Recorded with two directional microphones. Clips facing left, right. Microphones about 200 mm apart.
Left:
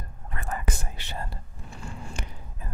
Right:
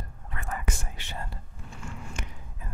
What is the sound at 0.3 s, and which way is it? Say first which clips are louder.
Whispering: left 2 dB; 35° left (ahead or behind).